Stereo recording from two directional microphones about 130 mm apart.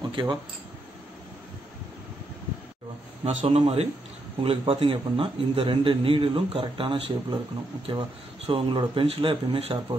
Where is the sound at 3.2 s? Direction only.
55° right (ahead or behind).